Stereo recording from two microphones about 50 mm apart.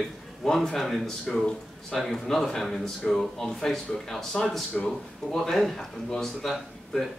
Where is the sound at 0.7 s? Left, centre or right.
Centre.